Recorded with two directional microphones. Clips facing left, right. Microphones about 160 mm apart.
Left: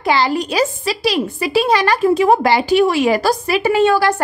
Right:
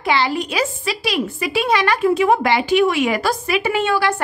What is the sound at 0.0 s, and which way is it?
A woman's voice, 40° left (ahead or behind).